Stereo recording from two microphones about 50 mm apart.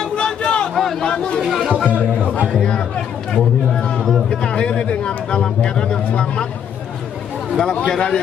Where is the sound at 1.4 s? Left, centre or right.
Centre.